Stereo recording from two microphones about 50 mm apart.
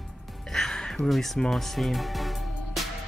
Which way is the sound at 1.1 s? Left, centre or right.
Centre.